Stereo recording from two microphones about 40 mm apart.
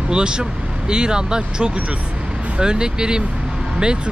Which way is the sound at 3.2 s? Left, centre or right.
Right.